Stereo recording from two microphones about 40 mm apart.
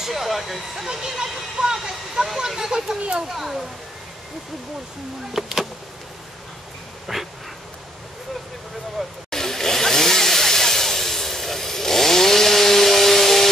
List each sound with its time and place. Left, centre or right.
0.0 s speech: centre
0.9 s speech: centre
3.3 s speech: centre
5.3 s speech: centre
7.1 s dog: centre
9.0 s dog: centre
9.3 s chainsaw: centre